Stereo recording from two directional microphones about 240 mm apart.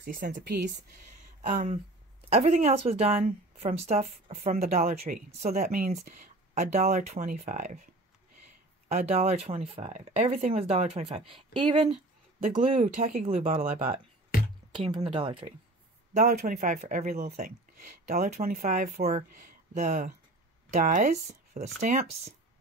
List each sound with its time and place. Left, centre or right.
0.0 s speech: right
1.4 s speech: right
12.4 s speech: right